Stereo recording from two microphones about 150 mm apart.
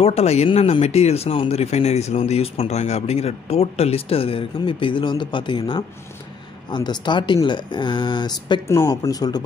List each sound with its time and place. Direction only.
0.0 s speech: 45° left (ahead or behind)
8.6 s speech: 20° left (ahead or behind)